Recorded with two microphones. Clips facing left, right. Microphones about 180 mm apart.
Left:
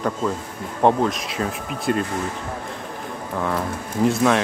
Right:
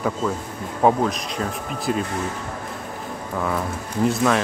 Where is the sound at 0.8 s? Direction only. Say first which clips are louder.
Even; centre (ahead or behind).